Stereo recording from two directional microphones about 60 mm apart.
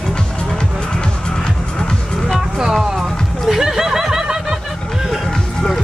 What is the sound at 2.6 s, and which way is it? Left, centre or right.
Music, centre.